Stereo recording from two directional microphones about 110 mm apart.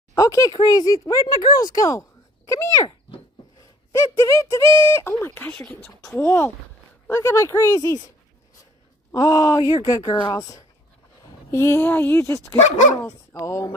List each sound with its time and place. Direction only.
0.1 s speech: 30° left (ahead or behind)
3.9 s speech: 30° left (ahead or behind)
9.1 s speech: 30° left (ahead or behind)
11.5 s speech: 20° left (ahead or behind)
12.5 s speech: 90° left
13.0 s speech: 30° left (ahead or behind)